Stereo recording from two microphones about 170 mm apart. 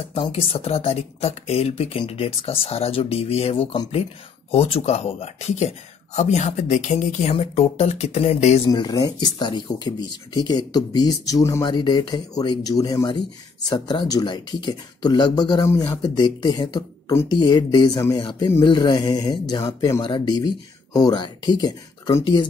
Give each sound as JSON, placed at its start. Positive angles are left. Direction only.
{"t": 0.1, "sound": "speech", "side_deg": 35}
{"t": 8.6, "sound": "speech", "side_deg": 25}
{"t": 15.7, "sound": "speech", "side_deg": 15}
{"t": 16.2, "sound": "speech", "side_deg": 25}